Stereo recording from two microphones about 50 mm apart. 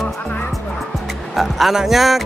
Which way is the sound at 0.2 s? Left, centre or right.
Left.